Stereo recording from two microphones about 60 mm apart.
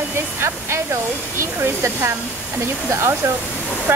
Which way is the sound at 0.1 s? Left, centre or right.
Right.